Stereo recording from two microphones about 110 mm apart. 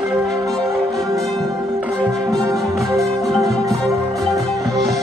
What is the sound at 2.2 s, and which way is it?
Music, 30° right (ahead or behind).